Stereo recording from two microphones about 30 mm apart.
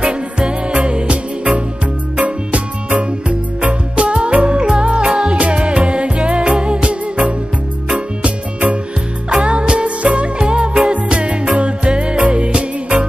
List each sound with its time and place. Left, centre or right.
0.0 s music: right
2.1 s music: right